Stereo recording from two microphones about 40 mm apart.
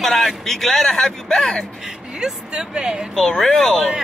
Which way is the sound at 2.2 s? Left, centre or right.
Right.